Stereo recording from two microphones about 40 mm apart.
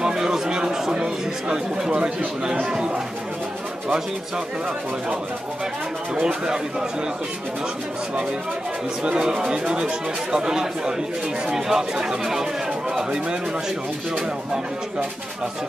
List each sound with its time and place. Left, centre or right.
0.0 s chatter: centre
1.9 s speech: right
6.2 s speech: centre
9.0 s speech: right